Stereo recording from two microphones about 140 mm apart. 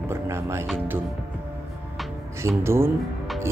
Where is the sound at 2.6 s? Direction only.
20° right (ahead or behind).